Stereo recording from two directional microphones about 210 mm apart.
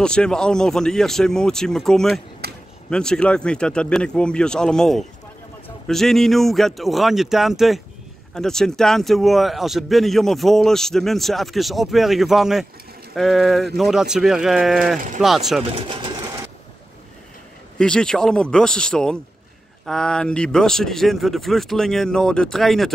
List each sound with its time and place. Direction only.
0.0 s speech: 5° left (ahead or behind)
15.6 s speech: 25° right (ahead or behind)
17.7 s speech: 5° left (ahead or behind)